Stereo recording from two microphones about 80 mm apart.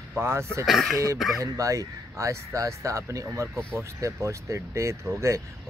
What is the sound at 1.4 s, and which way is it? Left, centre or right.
Speech, right.